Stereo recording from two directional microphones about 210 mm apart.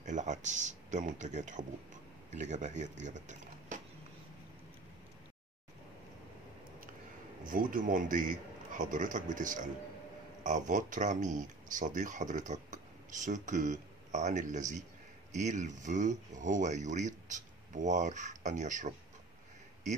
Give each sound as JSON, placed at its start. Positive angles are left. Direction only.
{"t": 0.0, "sound": "speech", "side_deg": -35}
{"t": 7.4, "sound": "speech", "side_deg": -40}